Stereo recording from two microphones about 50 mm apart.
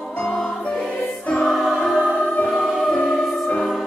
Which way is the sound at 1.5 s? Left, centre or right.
Centre.